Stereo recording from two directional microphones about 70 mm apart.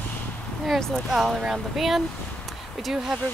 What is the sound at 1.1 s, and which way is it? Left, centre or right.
Speech, centre.